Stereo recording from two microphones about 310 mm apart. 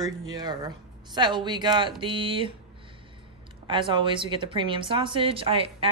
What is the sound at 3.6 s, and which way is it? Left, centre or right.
Speech, centre.